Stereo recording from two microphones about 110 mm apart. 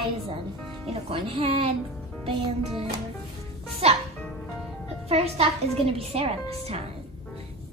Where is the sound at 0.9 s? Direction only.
60° right (ahead or behind).